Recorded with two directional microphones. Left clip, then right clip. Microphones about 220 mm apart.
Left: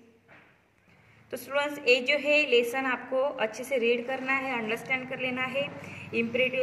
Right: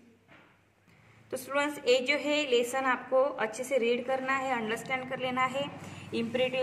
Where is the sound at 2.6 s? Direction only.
25° right (ahead or behind).